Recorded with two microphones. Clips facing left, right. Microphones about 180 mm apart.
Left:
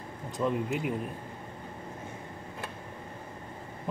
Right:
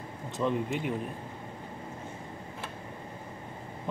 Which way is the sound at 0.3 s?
Centre (ahead or behind).